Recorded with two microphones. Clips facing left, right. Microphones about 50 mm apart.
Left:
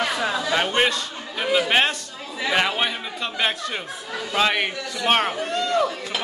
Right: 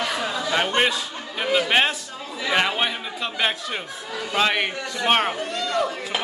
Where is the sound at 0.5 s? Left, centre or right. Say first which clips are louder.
Right 1 dB; centre.